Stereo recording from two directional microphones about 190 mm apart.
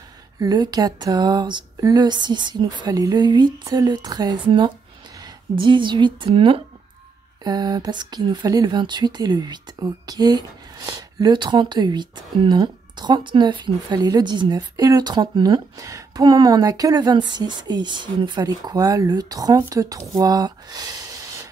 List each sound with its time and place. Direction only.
0.4 s a woman's voice: 20° right (ahead or behind)